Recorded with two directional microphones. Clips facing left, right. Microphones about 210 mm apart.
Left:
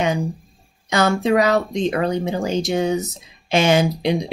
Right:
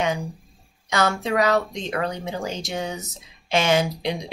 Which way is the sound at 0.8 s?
15° left (ahead or behind).